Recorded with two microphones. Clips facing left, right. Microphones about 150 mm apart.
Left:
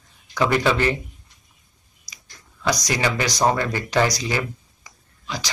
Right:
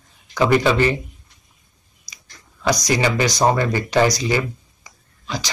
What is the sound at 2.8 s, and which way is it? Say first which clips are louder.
Speech: right 4 dB; 10° right (ahead or behind).